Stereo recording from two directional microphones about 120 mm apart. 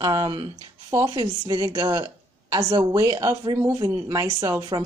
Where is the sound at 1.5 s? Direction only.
30° right (ahead or behind).